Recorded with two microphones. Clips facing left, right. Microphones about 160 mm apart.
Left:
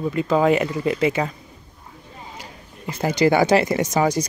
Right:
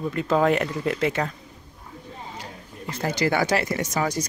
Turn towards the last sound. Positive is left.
turn(degrees=20)  # may be behind; listen again after turning